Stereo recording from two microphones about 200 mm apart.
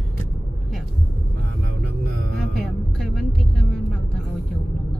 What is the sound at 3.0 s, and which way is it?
Speech, 5° left (ahead or behind).